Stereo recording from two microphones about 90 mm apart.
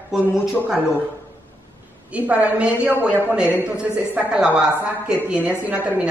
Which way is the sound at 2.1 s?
15° right (ahead or behind).